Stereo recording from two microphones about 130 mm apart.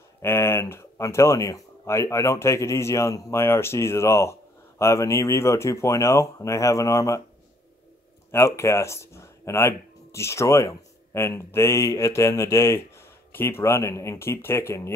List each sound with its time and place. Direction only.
0.2 s speech: 20° left (ahead or behind)
8.3 s speech: 20° left (ahead or behind)